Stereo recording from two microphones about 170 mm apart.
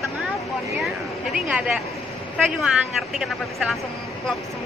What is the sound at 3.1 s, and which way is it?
Speech, centre (ahead or behind).